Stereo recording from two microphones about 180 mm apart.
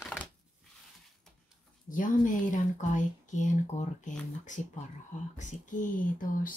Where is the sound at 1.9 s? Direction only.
45° left (ahead or behind).